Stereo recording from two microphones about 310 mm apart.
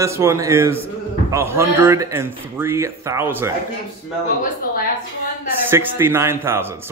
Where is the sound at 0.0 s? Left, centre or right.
Centre.